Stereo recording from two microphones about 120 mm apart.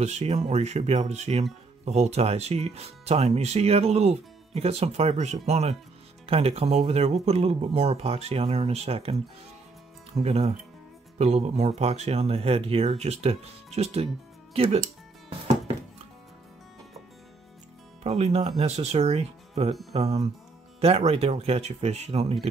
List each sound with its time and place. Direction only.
0.0 s speech: 65° right (ahead or behind)
10.1 s speech: 60° right (ahead or behind)
18.0 s speech: 60° right (ahead or behind)